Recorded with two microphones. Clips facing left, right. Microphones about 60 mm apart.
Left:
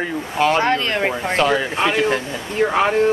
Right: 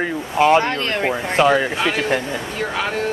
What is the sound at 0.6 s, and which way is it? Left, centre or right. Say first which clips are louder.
Speech: left 3 dB; left.